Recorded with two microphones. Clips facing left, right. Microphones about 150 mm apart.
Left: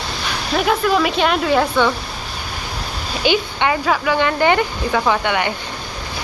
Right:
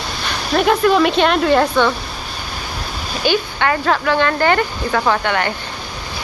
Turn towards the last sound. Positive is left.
turn(degrees=15)  # may be behind; listen again after turning